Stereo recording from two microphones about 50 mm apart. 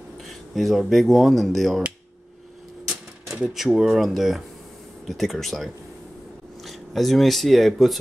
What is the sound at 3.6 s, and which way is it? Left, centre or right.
Speech, centre.